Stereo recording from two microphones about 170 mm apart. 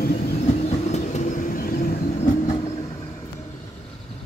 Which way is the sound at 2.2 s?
40° left (ahead or behind).